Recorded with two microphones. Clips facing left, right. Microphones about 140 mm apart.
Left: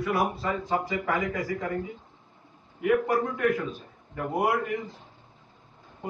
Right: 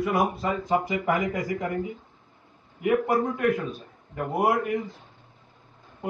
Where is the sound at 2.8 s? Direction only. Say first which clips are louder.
Right 1 dB; 10° right (ahead or behind).